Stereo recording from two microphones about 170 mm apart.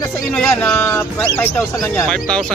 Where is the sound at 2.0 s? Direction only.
Centre (ahead or behind).